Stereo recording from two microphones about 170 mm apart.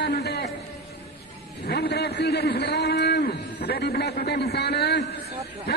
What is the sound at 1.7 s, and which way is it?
A man's voice, 70° left (ahead or behind).